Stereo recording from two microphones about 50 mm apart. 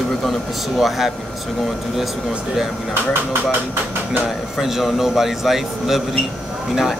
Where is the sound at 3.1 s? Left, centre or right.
Right.